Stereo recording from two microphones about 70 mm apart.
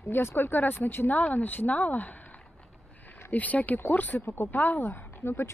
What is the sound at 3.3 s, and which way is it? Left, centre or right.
Speech, left.